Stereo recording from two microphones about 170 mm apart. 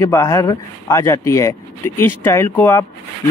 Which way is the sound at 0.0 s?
15° left (ahead or behind).